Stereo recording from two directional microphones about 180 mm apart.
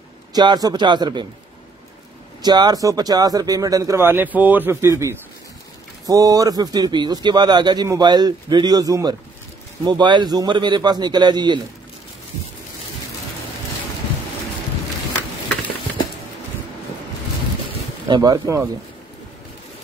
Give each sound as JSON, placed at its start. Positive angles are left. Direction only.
{"t": 0.3, "sound": "speech", "side_deg": -25}
{"t": 2.4, "sound": "speech", "side_deg": -25}
{"t": 18.0, "sound": "speech", "side_deg": -25}